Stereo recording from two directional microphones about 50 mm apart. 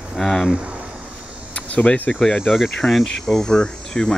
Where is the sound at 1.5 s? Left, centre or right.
Left.